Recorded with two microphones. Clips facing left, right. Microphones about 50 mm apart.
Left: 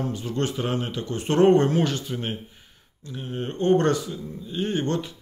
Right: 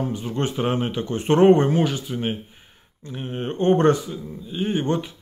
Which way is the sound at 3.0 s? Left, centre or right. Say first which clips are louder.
Right 2 dB; right.